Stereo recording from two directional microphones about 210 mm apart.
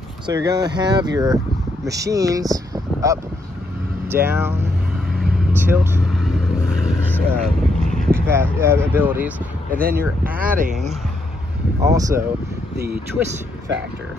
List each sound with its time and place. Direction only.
0.3 s speech: 20° right (ahead or behind)
7.1 s vehicle: 5° left (ahead or behind)
8.1 s speech: 10° right (ahead or behind)
9.7 s speech: 45° right (ahead or behind)
11.8 s speech: 15° right (ahead or behind)
12.7 s speech: 45° right (ahead or behind)